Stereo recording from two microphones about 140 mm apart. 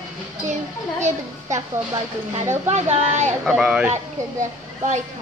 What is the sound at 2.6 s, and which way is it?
Speech, 55° right (ahead or behind).